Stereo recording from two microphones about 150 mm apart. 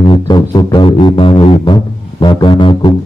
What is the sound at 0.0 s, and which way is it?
Music, 30° left (ahead or behind).